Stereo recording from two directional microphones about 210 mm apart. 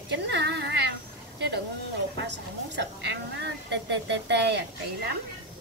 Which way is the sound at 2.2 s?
55° right (ahead or behind).